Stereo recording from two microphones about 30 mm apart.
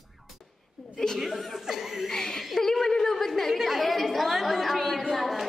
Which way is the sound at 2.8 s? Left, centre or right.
Centre.